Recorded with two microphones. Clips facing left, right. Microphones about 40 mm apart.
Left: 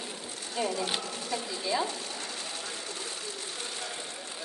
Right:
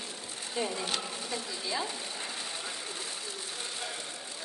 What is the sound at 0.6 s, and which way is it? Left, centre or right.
Speech, centre.